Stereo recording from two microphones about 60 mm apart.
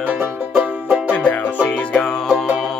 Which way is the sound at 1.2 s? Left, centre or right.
Left.